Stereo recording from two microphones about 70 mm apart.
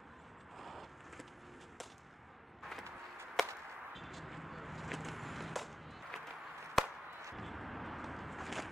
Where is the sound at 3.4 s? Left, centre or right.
Centre.